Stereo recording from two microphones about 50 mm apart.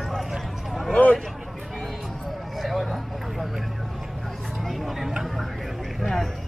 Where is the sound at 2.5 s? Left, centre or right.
Centre.